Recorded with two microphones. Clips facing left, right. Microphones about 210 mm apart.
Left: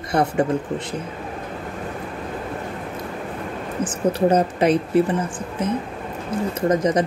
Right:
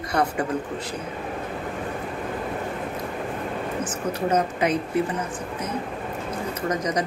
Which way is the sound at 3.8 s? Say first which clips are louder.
Left 10 dB; 30° left (ahead or behind).